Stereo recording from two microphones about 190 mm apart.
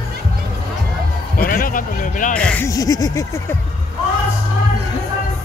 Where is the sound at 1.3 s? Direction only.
50° left (ahead or behind).